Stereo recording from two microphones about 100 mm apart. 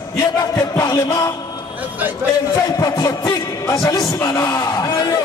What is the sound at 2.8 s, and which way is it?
Speech, 40° left (ahead or behind).